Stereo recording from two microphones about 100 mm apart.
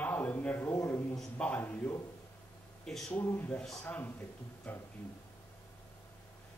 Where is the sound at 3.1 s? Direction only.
20° left (ahead or behind).